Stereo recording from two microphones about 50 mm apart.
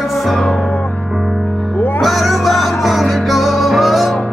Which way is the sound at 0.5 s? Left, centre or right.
Left.